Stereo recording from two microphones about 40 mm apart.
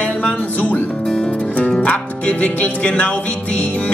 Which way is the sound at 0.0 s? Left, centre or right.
Left.